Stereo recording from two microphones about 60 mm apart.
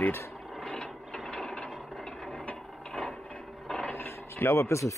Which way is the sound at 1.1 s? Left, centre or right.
Centre.